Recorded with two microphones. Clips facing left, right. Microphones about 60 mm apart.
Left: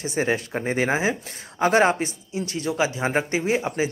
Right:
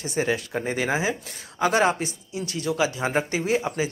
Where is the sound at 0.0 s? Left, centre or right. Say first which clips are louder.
Left 1 dB; left.